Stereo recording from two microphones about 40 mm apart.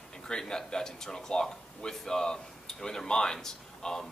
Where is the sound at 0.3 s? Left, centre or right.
Centre.